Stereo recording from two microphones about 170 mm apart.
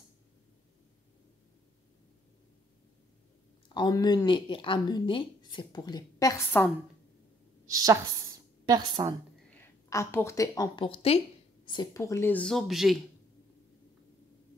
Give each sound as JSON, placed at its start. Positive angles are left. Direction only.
{"t": 3.6, "sound": "speech", "side_deg": 25}
{"t": 7.6, "sound": "a woman's voice", "side_deg": -20}
{"t": 9.6, "sound": "speech", "side_deg": 15}
{"t": 10.9, "sound": "speech", "side_deg": 35}